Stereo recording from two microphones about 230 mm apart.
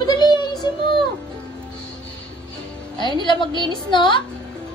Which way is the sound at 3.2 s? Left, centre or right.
Left.